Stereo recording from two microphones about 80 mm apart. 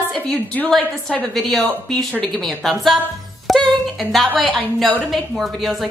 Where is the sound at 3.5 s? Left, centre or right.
Centre.